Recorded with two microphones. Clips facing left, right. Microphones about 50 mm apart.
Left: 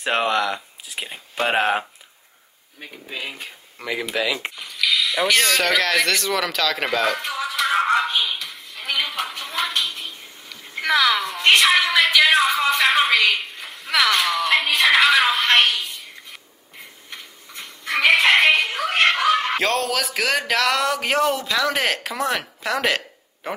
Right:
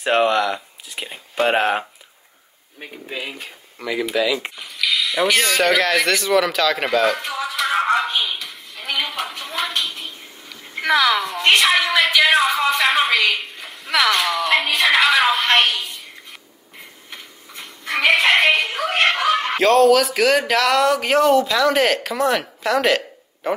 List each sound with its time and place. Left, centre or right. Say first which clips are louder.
0.0 s speech: right 3 dB; centre
4.1 s speech: right 4 dB; left
4.6 s speech: even; centre